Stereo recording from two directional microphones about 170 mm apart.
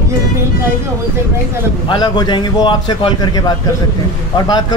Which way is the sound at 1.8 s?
25° left (ahead or behind).